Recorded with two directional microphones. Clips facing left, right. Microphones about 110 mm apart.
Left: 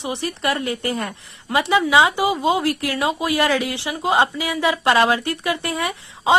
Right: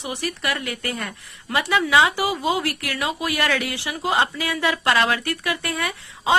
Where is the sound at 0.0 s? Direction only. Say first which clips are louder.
Left 4 dB; 25° left (ahead or behind).